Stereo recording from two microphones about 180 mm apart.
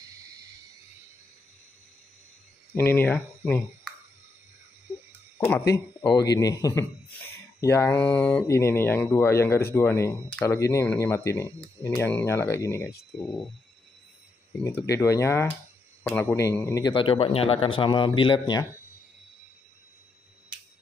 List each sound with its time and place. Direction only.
2.7 s speech: 10° left (ahead or behind)
6.0 s a man's voice: 20° left (ahead or behind)
13.2 s speech: centre (ahead or behind)
15.0 s a man's voice: 15° left (ahead or behind)